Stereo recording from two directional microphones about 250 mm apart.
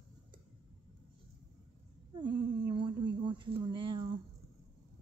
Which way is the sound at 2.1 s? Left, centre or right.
Centre.